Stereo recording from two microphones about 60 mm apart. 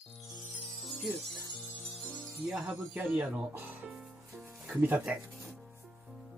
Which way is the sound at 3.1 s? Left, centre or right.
Right.